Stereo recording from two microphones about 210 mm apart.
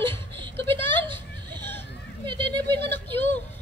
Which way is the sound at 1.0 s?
20° right (ahead or behind).